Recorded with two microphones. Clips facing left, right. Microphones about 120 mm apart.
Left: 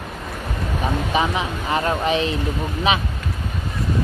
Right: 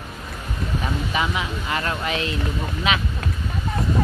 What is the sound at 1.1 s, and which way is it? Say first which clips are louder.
Speech: left 3 dB; 25° left (ahead or behind).